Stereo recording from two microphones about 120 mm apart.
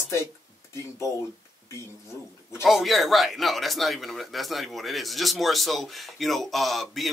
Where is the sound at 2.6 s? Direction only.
Centre (ahead or behind).